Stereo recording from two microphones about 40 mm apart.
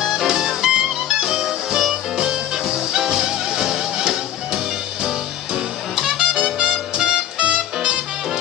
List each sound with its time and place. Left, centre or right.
0.0 s music: centre; by 8.0 s right